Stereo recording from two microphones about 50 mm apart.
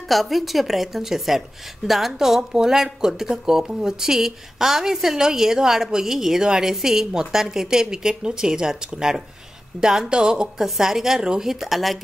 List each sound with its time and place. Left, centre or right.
0.1 s a woman's voice: centre